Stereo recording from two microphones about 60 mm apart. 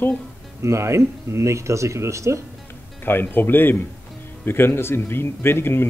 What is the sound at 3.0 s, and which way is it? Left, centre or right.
Speech, left.